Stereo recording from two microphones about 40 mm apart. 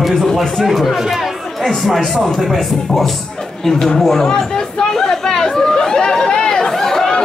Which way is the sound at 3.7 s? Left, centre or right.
Centre.